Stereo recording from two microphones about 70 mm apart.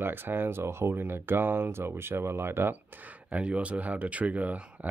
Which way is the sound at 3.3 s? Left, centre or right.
Centre.